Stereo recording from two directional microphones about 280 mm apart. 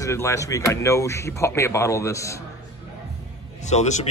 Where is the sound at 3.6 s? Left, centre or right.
Left.